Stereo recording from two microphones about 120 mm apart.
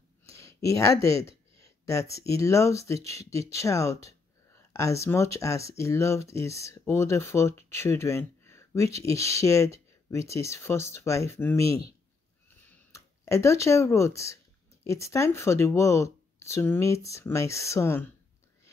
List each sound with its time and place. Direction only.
0.3 s speech: 25° left (ahead or behind)
12.9 s speech: 25° left (ahead or behind)